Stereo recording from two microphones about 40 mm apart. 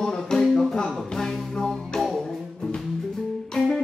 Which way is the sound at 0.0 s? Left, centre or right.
Centre.